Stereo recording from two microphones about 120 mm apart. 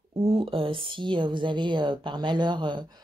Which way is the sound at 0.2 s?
50° right (ahead or behind).